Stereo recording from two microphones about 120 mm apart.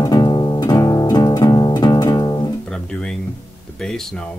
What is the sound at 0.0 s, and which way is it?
Music, 40° left (ahead or behind).